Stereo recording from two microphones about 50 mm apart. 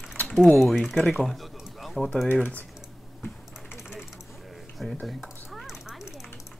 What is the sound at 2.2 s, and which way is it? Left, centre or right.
Speech, left.